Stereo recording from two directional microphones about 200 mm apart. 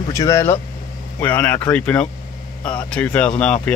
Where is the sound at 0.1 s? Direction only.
15° left (ahead or behind).